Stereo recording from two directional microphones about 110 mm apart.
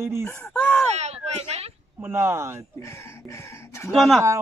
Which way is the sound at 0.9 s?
85° right.